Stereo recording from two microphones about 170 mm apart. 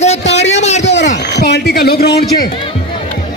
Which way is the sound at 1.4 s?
75° left (ahead or behind).